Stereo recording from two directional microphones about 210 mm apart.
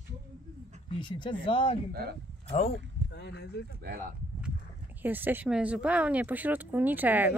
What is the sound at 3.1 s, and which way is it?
Speech, 55° left (ahead or behind).